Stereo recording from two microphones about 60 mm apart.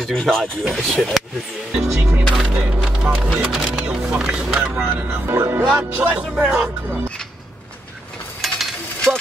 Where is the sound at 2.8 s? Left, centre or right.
Centre.